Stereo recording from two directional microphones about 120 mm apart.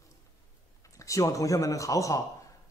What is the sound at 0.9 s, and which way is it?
A man's voice, 25° left (ahead or behind).